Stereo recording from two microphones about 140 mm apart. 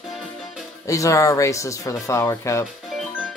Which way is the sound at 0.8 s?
25° left (ahead or behind).